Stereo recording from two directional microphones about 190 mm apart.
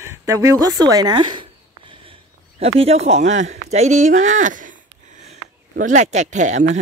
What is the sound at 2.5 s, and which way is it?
Speech, 30° right (ahead or behind).